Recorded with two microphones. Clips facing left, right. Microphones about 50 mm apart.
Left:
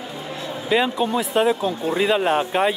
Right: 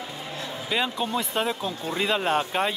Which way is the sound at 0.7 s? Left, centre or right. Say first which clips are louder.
Left 7 dB; centre.